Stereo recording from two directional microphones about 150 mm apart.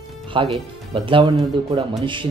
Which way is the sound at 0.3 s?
35° right (ahead or behind).